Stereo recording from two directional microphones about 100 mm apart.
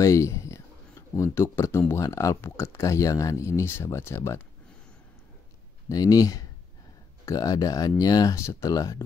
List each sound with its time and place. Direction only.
0.0 s speech: 30° left (ahead or behind)
5.9 s speech: 35° left (ahead or behind)
8.4 s speech: 30° left (ahead or behind)